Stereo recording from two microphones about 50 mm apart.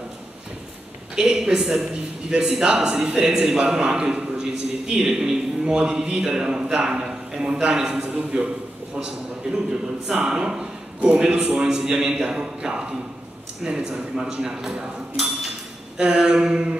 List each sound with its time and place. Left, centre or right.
1.1 s a man's voice: centre
6.0 s a man's voice: right
11.6 s a man's voice: centre